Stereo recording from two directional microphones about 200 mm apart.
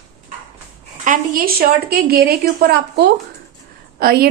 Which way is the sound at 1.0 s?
45° right (ahead or behind).